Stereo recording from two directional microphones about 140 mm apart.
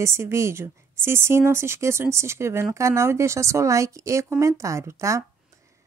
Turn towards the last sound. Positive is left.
turn(degrees=-20)  # may be behind; listen again after turning